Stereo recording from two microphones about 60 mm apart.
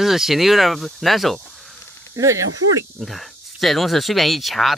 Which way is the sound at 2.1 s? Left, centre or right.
Right.